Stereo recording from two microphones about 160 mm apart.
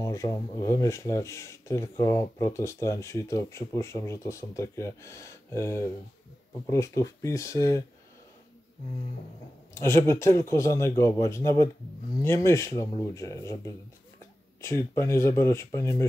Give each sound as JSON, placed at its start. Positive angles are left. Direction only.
{"t": 0.0, "sound": "speech", "side_deg": 20}
{"t": 9.8, "sound": "speech", "side_deg": 15}
{"t": 14.8, "sound": "speech", "side_deg": 15}